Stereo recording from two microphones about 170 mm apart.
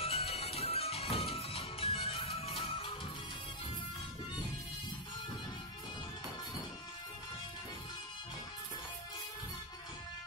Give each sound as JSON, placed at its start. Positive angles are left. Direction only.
{"t": 0.0, "sound": "music", "side_deg": 35}